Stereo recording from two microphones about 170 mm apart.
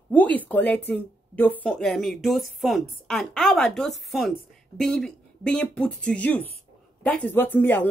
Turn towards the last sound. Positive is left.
turn(degrees=10)  # may be behind; listen again after turning